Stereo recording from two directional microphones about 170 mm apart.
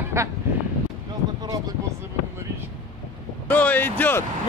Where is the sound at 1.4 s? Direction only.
20° right (ahead or behind).